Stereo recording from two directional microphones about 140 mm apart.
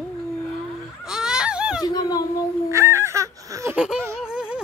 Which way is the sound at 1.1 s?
5° right (ahead or behind).